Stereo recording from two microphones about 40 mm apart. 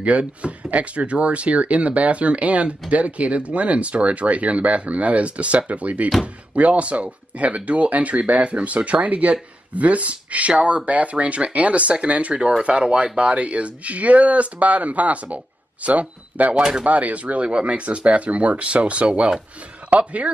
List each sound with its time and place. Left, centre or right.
0.0 s speech: right